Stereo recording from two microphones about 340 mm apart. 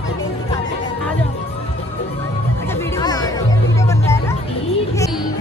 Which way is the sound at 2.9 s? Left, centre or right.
Centre.